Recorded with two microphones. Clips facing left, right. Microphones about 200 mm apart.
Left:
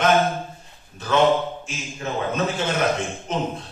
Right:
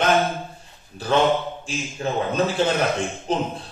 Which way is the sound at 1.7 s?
35° right (ahead or behind).